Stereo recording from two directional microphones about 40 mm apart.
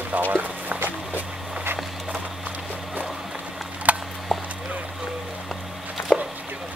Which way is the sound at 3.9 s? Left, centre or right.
Right.